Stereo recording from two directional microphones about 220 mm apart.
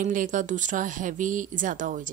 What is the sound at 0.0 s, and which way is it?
Speech, 35° right (ahead or behind).